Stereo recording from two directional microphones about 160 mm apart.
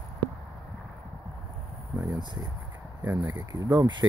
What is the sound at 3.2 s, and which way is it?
Speech, 25° right (ahead or behind).